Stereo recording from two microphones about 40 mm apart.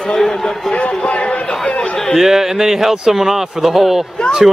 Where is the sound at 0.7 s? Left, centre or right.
Left.